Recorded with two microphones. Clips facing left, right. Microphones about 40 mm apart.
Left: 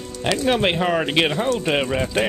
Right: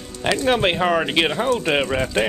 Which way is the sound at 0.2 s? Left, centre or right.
Centre.